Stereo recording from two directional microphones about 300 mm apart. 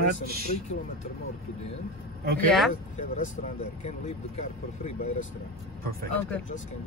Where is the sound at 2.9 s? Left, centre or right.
Left.